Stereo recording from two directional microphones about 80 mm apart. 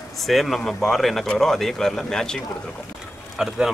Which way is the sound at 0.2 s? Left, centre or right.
Centre.